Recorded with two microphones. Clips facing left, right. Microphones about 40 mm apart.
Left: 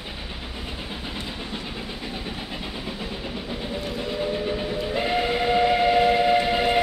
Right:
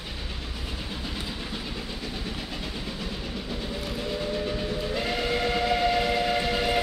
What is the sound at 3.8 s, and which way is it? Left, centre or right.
Train, centre.